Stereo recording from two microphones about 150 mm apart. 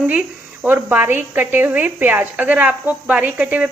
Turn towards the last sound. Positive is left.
turn(degrees=-10)  # may be behind; listen again after turning